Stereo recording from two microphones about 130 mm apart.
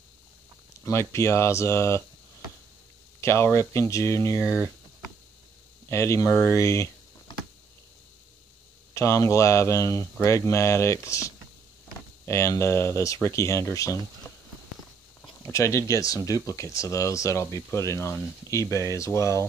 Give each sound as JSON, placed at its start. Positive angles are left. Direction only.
{"t": 0.8, "sound": "speech", "side_deg": 20}
{"t": 3.2, "sound": "speech", "side_deg": 20}
{"t": 4.5, "sound": "a sound", "side_deg": 0}
{"t": 5.9, "sound": "speech", "side_deg": 20}
{"t": 8.9, "sound": "speech", "side_deg": 25}
{"t": 15.4, "sound": "speech", "side_deg": 20}